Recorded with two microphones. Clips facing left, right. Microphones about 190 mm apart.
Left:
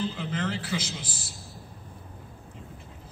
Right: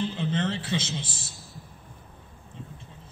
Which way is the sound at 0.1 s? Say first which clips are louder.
Right 3 dB; 30° right (ahead or behind).